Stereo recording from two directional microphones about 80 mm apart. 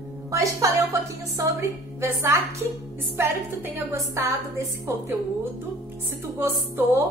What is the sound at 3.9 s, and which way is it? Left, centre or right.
Speech, right.